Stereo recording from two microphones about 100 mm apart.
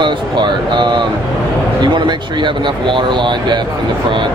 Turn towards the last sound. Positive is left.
turn(degrees=-50)  # may be behind; listen again after turning